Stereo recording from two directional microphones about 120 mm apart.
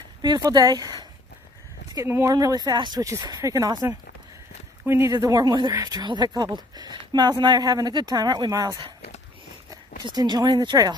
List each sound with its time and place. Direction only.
0.2 s speech: 35° right (ahead or behind)
2.0 s speech: 20° right (ahead or behind)
2.3 s speech: 35° right (ahead or behind)
4.8 s speech: 20° right (ahead or behind); by 11.0 s 40° right (ahead or behind)